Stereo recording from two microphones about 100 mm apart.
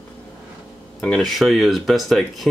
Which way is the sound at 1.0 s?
5° left (ahead or behind).